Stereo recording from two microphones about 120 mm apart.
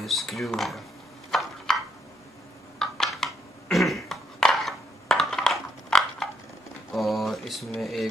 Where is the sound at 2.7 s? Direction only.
5° left (ahead or behind).